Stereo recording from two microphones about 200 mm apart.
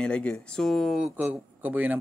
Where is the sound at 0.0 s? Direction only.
5° left (ahead or behind).